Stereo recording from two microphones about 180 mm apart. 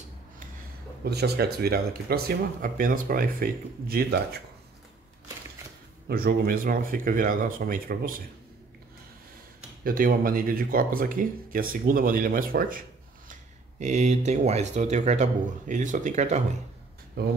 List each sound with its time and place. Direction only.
1.0 s speech: 65° right (ahead or behind)
6.0 s speech: 55° right (ahead or behind)
9.8 s speech: 50° right (ahead or behind)
17.2 s speech: 65° right (ahead or behind)